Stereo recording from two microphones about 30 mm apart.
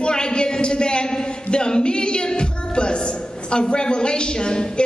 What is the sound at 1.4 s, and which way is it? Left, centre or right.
Music, left.